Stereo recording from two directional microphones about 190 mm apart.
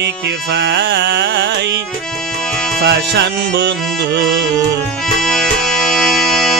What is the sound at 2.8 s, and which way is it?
Music, 65° right (ahead or behind).